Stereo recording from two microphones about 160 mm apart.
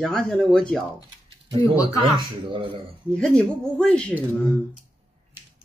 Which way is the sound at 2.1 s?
30° right (ahead or behind).